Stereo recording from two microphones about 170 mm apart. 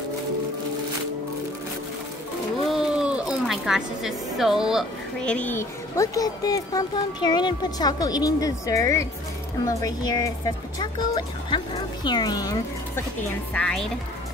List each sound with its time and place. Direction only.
2.6 s a woman's voice: centre (ahead or behind); by 13.0 s 20° left (ahead or behind)
13.5 s a woman's voice: 5° left (ahead or behind)